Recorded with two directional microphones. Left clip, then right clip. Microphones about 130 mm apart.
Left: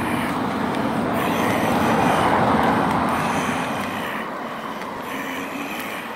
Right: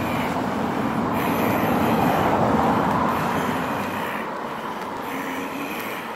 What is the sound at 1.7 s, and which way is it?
Vehicle, 25° left (ahead or behind).